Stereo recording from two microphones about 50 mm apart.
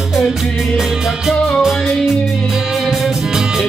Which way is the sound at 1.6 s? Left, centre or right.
Centre.